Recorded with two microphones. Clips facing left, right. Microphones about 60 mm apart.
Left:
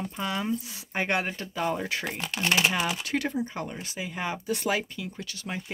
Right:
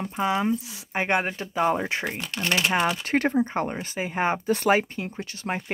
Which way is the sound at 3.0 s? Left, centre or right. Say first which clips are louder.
Right 6 dB; right.